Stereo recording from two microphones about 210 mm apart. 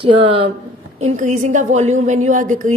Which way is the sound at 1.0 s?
35° right (ahead or behind).